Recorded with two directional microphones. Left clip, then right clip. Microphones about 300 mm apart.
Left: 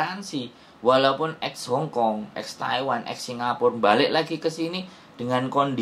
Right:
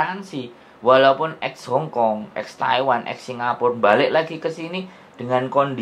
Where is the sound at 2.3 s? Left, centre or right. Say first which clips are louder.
Right 6 dB; centre.